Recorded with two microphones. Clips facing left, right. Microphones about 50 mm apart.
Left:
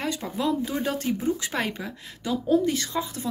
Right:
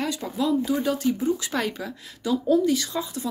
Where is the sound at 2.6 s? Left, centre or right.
Left.